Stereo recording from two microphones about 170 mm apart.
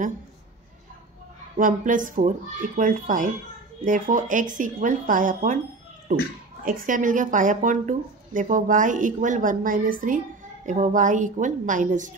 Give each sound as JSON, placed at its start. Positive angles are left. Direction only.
{"t": 1.6, "sound": "a woman's voice", "side_deg": -50}
{"t": 6.6, "sound": "a woman's voice", "side_deg": -55}